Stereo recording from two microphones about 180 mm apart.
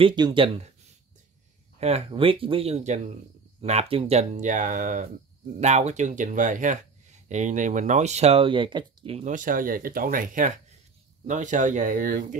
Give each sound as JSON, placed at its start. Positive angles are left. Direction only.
{"t": 0.0, "sound": "speech", "side_deg": -25}
{"t": 1.8, "sound": "speech", "side_deg": -35}